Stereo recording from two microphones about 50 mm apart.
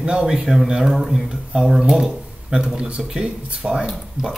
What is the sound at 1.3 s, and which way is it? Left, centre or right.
Speech, centre.